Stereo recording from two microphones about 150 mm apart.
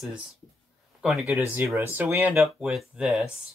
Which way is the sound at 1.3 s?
20° right (ahead or behind).